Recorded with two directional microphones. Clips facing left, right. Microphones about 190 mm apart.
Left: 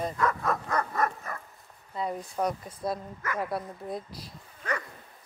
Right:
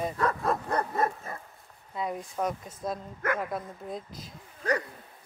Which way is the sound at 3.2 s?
55° right (ahead or behind).